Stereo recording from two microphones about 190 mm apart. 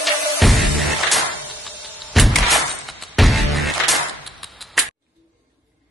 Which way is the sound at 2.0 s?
Centre (ahead or behind).